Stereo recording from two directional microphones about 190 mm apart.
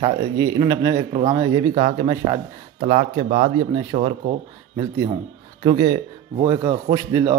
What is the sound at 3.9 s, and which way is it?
Speech, 35° right (ahead or behind).